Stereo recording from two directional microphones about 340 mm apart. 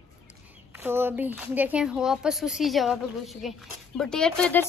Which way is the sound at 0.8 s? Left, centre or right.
Centre.